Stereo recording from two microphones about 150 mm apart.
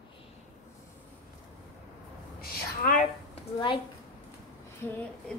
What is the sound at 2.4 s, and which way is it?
Speech, 90° left.